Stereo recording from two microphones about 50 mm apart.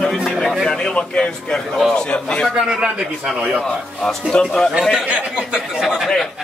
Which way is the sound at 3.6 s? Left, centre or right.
Centre.